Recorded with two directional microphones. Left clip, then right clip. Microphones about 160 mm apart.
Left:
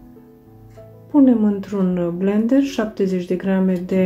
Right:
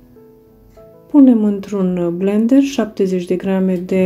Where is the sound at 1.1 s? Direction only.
30° right (ahead or behind).